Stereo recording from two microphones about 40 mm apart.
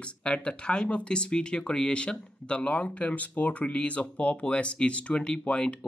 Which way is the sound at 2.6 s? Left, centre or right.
Left.